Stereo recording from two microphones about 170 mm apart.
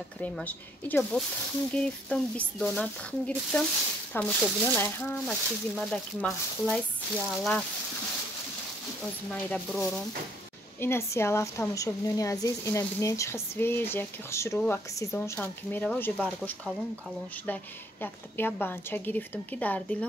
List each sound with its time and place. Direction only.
0.2 s speech: 10° left (ahead or behind)
9.0 s speech: 5° left (ahead or behind)
10.8 s speech: 15° left (ahead or behind)
18.0 s speech: 10° left (ahead or behind)